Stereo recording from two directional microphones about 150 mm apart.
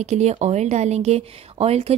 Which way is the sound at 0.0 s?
45° right (ahead or behind).